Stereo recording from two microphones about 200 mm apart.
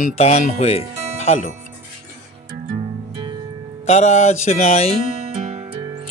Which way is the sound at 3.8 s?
35° left (ahead or behind).